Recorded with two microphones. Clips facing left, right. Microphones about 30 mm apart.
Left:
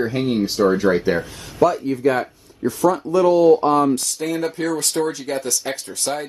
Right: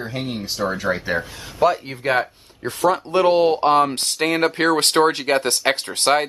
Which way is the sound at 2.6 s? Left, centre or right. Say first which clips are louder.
Left 1 dB; right.